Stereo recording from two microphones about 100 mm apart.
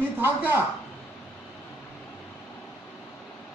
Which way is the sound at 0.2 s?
25° right (ahead or behind).